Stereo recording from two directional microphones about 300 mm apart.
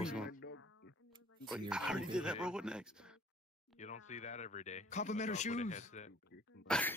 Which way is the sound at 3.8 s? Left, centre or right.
Left.